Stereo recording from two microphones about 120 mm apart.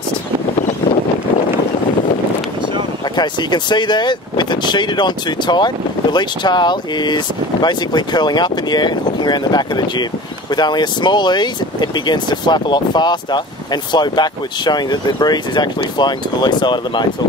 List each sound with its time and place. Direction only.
3.2 s speech: 40° left (ahead or behind)